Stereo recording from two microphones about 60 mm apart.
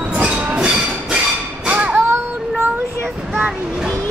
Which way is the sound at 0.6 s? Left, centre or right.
Centre.